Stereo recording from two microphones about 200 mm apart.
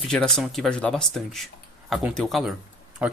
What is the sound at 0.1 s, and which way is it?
Speech, 5° left (ahead or behind).